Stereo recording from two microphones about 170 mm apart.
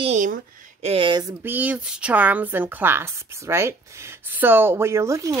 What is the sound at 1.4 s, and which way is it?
A woman's voice, 10° right (ahead or behind).